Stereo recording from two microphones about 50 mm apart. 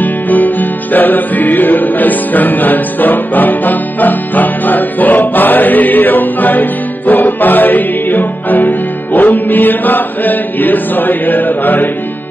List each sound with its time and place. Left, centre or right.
0.0 s music: left